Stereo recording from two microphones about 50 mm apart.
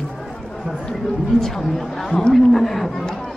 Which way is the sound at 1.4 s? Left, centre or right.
Centre.